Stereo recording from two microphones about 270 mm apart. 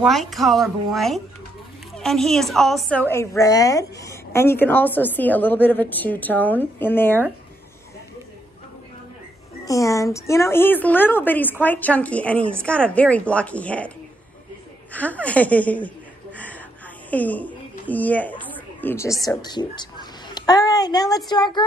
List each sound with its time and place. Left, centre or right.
0.0 s a woman's voice: centre
9.7 s a woman's voice: centre
17.1 s a woman's voice: centre